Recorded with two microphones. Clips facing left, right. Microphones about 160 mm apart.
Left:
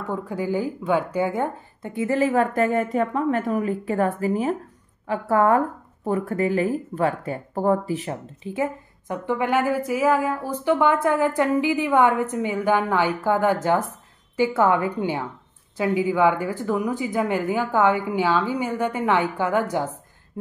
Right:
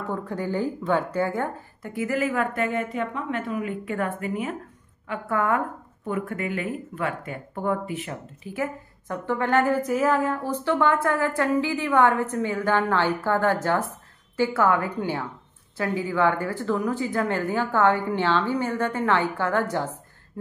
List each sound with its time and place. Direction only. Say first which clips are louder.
0.1 s a woman's voice: left 3 dB; 10° left (ahead or behind)